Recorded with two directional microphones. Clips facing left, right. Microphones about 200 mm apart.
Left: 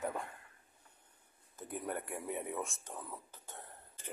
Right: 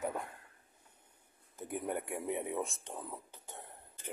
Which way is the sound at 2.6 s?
35° right (ahead or behind).